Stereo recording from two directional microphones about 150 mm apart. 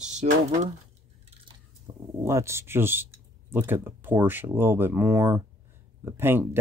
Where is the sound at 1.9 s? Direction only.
30° right (ahead or behind).